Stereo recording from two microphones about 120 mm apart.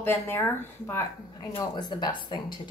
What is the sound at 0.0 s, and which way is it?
Speech, 15° left (ahead or behind).